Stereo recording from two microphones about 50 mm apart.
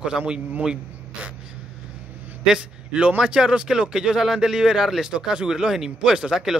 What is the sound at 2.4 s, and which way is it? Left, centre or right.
A man's voice, centre.